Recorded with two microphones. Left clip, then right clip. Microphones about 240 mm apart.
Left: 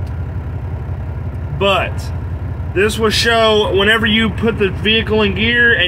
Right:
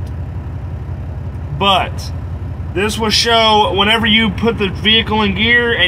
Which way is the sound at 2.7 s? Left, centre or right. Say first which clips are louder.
Left 1 dB; right.